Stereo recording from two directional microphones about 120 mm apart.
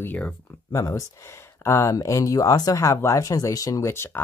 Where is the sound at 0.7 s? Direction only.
25° left (ahead or behind).